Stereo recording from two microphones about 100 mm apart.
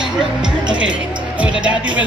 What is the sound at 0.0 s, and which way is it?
Music, 10° right (ahead or behind).